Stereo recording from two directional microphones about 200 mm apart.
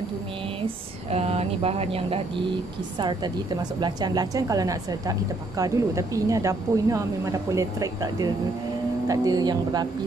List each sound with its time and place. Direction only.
1.1 s speech: 30° right (ahead or behind)
3.8 s a woman's voice: 20° right (ahead or behind)